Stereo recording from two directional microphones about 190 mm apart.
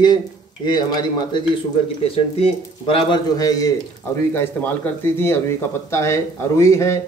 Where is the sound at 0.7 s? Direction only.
20° left (ahead or behind).